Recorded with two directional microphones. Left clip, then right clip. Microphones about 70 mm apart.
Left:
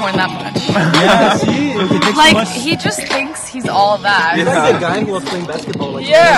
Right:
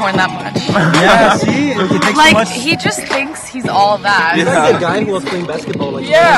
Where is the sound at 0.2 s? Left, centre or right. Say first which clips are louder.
Right 2 dB; right.